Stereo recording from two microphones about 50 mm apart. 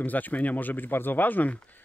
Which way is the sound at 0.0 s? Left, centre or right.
Left.